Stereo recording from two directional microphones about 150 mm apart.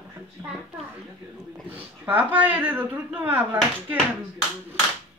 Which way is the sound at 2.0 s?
10° right (ahead or behind).